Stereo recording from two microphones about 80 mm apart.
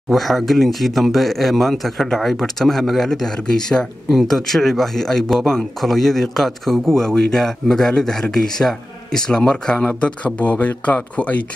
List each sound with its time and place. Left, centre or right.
0.1 s speech: centre